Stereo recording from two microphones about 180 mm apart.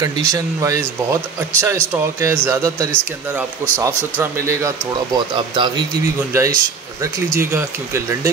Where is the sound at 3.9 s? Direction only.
10° left (ahead or behind).